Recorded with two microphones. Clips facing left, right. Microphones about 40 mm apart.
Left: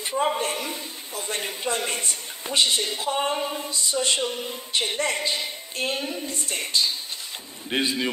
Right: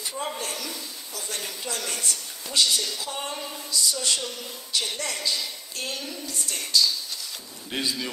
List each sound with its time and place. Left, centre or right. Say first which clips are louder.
0.1 s a man's voice: left 9 dB; left